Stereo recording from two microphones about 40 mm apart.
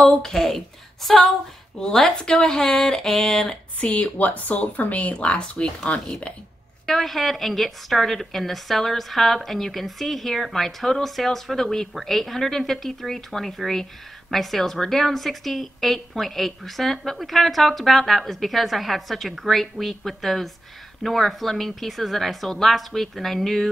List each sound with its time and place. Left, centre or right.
0.2 s speech: centre
3.8 s speech: left
6.9 s a woman's voice: centre